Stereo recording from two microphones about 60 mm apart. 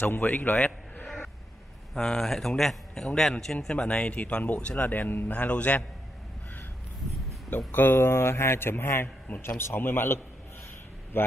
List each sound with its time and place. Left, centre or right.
0.0 s speech: left
2.0 s speech: centre
3.6 s speech: centre
7.4 s a man's voice: left